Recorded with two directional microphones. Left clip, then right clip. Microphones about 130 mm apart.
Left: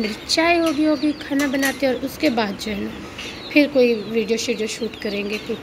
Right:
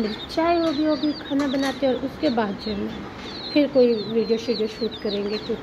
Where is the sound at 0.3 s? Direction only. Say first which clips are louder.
Left 4 dB; 15° left (ahead or behind).